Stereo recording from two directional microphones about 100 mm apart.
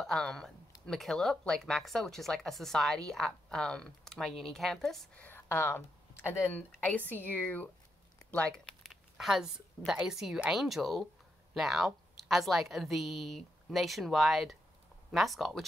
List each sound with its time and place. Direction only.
0.0 s speech: 5° left (ahead or behind)
5.1 s speech: 20° left (ahead or behind)
8.8 s a woman's voice: 5° right (ahead or behind)